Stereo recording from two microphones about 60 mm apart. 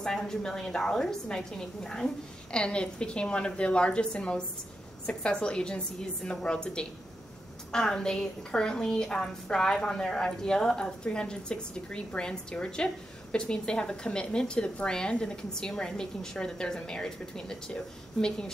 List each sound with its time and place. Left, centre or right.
0.0 s a woman's voice: centre